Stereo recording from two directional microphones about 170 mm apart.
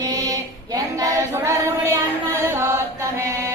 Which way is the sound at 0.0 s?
20° right (ahead or behind).